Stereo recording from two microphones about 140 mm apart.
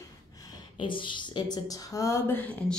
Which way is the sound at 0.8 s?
35° left (ahead or behind).